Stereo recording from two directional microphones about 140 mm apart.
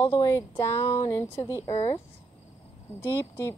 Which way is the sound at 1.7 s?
45° left (ahead or behind).